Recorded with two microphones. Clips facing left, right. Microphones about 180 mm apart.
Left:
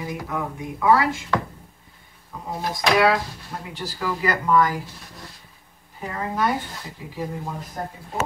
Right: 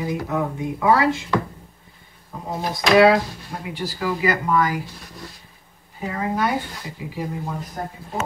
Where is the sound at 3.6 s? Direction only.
10° right (ahead or behind).